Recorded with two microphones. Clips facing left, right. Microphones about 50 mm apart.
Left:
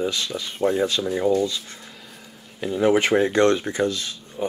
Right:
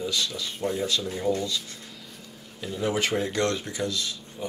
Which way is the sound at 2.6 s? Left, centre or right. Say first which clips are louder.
Left 8 dB; left.